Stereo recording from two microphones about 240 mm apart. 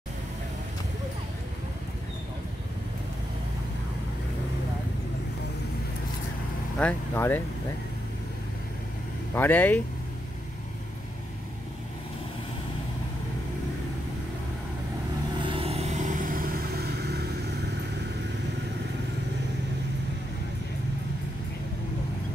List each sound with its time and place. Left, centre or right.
6.8 s speech: centre
9.3 s speech: centre
15.4 s vehicle: right